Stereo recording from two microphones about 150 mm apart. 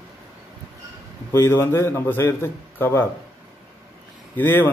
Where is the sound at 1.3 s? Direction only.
15° left (ahead or behind).